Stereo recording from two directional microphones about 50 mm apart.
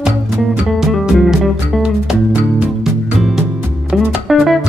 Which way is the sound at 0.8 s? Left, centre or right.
Centre.